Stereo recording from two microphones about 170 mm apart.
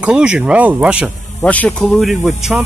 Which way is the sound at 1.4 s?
10° left (ahead or behind).